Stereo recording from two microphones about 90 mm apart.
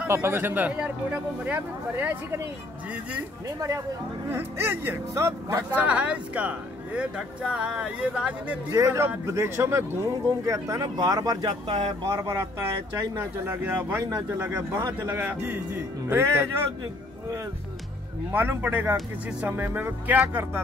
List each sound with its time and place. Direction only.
0.1 s speech: 25° right (ahead or behind)
3.4 s speech: 40° right (ahead or behind)
4.3 s speech: 25° right (ahead or behind)
5.7 s speech: 15° right (ahead or behind)
8.7 s speech: 30° right (ahead or behind); by 11.5 s 45° right (ahead or behind)
11.6 s speech: 75° right (ahead or behind)
12.1 s speech: 35° right (ahead or behind); by 14.0 s 20° right (ahead or behind)
14.0 s speech: 30° right (ahead or behind)
15.0 s speech: 20° right (ahead or behind)
18.3 s speech: 20° right (ahead or behind)